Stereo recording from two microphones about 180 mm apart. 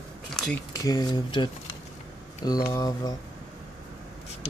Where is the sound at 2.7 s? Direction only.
20° left (ahead or behind).